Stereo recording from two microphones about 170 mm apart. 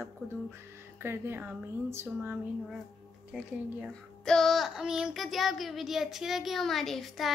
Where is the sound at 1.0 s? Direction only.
15° right (ahead or behind).